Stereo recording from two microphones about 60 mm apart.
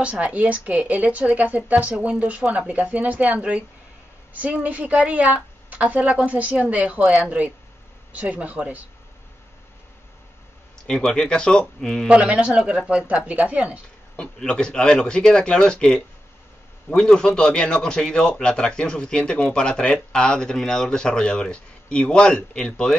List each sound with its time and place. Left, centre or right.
0.0 s a woman's voice: right
10.9 s a man's voice: centre
12.1 s a woman's voice: centre
14.1 s a man's voice: centre